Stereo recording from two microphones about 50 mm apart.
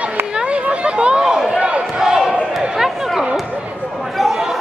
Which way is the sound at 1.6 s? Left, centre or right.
Right.